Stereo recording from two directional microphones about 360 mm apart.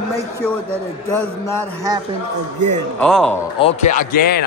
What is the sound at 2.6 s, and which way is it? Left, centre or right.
Speech, right.